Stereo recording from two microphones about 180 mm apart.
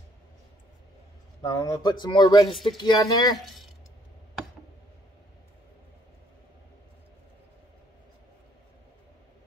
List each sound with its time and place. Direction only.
1.4 s speech: 20° left (ahead or behind)